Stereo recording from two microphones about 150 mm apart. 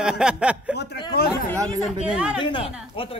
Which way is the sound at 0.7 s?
90° left.